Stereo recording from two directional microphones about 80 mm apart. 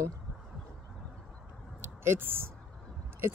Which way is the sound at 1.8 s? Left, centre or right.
Right.